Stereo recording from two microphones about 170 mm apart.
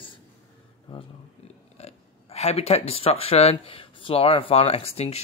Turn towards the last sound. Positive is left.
turn(degrees=35)  # may be behind; listen again after turning